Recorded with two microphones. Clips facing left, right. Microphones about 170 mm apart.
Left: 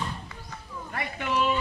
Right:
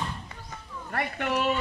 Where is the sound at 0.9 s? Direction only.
55° right (ahead or behind).